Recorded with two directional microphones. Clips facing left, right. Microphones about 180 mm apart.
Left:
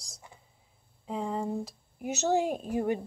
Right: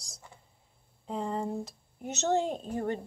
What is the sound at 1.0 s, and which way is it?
Speech, centre (ahead or behind).